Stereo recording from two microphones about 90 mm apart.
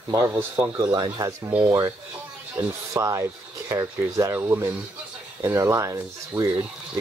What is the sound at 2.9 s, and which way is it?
Speech, 35° right (ahead or behind).